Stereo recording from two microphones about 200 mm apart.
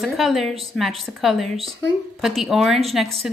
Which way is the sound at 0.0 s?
Centre (ahead or behind).